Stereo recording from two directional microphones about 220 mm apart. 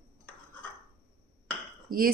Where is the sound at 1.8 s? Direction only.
40° right (ahead or behind).